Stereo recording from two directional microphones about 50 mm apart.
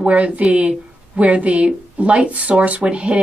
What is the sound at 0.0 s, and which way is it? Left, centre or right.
Speech, right.